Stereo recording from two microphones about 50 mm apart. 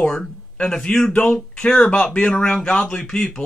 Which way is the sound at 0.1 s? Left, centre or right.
Centre.